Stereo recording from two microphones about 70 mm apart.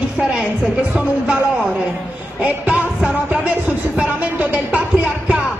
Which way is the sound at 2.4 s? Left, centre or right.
Right.